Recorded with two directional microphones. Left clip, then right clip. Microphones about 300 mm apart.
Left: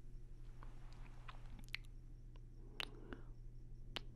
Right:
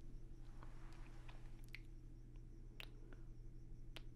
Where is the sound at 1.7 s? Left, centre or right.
Left.